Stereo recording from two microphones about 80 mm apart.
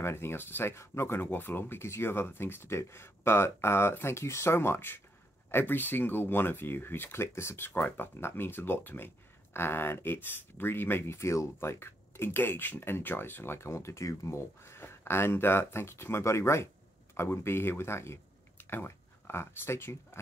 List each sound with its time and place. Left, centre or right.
0.0 s speech: left